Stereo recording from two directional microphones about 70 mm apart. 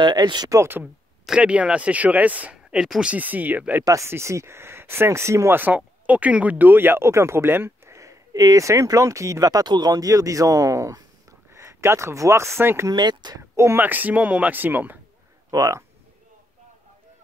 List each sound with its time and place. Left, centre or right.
0.0 s speech: right
1.4 s speech: centre
2.5 s speech: centre
3.1 s speech: right
3.8 s speech: right
5.6 s speech: right
11.5 s speech: right
12.9 s speech: right
13.4 s speech: right
13.8 s speech: right
15.5 s speech: right